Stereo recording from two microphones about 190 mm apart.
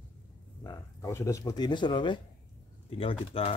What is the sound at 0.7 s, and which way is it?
Speech, 15° left (ahead or behind).